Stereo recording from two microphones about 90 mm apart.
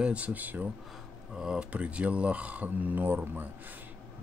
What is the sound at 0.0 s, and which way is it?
Speech, 15° right (ahead or behind).